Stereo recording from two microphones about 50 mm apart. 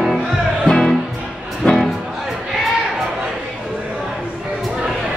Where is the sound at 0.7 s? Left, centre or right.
Centre.